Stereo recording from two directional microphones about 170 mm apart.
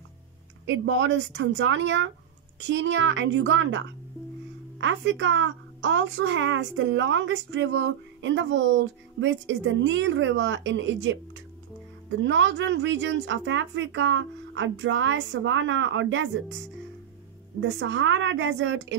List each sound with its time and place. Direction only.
0.7 s a woman's voice: 90° right
12.2 s a woman's voice: 90° right
17.6 s a woman's voice: 90° right